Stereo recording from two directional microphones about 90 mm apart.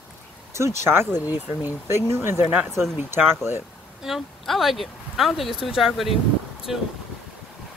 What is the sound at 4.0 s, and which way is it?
Speech, 5° right (ahead or behind).